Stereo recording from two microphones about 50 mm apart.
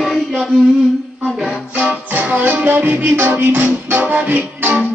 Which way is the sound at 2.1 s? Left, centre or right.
Right.